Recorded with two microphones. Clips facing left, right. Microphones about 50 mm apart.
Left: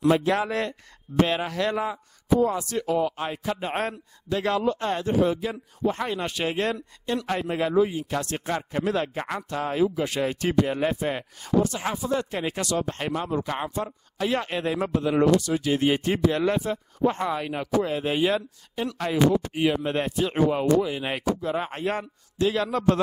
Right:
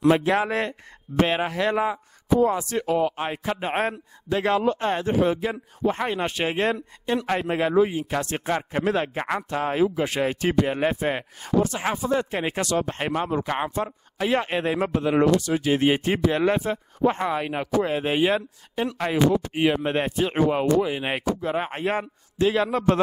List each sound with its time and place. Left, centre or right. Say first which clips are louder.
0.1 s speech: right 2 dB; right